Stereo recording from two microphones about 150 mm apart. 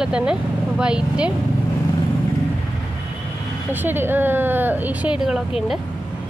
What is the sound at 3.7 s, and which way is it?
A woman's voice, 15° right (ahead or behind).